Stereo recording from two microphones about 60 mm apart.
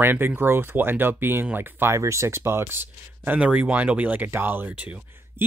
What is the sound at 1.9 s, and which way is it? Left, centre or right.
Speech, right.